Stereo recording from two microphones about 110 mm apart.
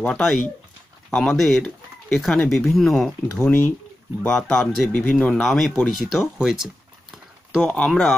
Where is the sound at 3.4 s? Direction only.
20° left (ahead or behind).